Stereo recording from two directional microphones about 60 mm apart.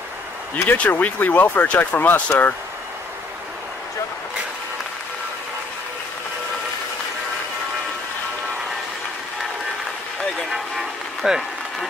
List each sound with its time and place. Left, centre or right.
0.7 s speech: left
10.5 s music: centre